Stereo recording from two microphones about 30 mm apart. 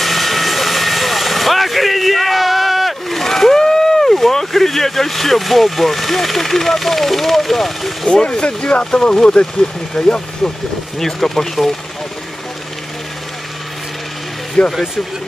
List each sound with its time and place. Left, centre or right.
0.0 s vehicle: centre
3.3 s a sound: centre
3.5 s speech: centre
8.1 s speech: left
11.0 s speech: centre
14.6 s speech: left